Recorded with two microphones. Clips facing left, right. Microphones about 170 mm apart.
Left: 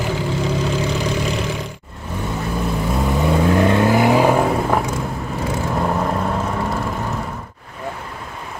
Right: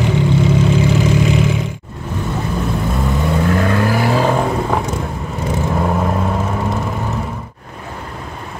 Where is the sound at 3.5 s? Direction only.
20° left (ahead or behind).